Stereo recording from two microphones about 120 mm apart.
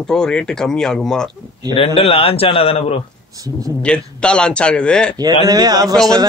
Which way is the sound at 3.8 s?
10° left (ahead or behind).